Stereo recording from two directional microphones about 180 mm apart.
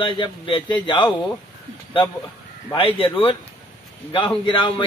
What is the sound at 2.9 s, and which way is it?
A man's voice, 30° left (ahead or behind).